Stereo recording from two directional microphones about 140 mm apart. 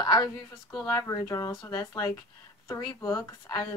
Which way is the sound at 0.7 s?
10° left (ahead or behind).